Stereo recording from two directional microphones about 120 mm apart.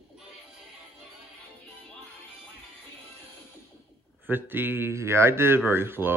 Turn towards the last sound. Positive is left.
turn(degrees=-20)  # may be behind; listen again after turning